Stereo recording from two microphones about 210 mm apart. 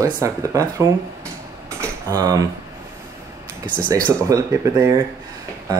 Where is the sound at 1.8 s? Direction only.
15° right (ahead or behind).